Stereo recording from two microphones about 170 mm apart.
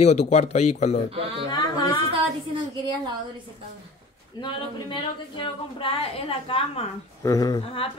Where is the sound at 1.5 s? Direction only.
25° left (ahead or behind).